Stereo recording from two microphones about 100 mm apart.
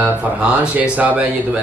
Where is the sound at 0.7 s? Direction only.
15° right (ahead or behind).